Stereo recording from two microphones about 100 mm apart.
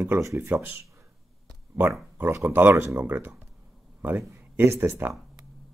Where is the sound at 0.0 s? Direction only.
30° right (ahead or behind).